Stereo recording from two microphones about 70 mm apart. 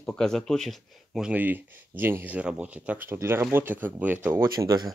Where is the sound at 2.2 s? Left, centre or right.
Right.